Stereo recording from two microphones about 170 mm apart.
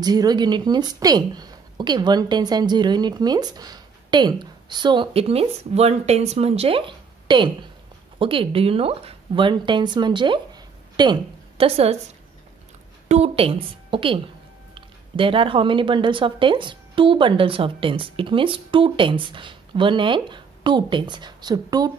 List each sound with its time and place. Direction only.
0.0 s a woman's voice: 25° right (ahead or behind)
13.1 s a woman's voice: 35° right (ahead or behind)